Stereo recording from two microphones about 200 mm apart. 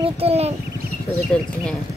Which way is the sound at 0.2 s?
30° right (ahead or behind).